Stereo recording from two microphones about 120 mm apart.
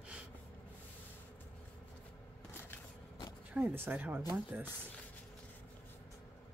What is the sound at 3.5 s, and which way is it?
Speech, 15° right (ahead or behind).